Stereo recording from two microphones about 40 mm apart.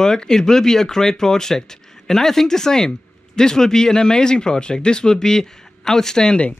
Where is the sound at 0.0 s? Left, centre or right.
Centre.